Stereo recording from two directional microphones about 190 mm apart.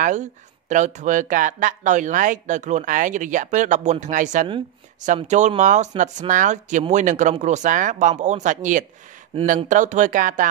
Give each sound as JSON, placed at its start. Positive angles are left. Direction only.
{"t": 0.0, "sound": "speech", "side_deg": -40}